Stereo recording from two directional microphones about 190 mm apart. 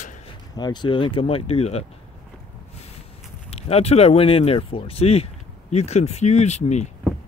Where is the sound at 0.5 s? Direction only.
20° left (ahead or behind).